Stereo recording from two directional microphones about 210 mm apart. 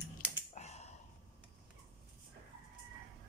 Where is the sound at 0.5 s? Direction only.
30° left (ahead or behind).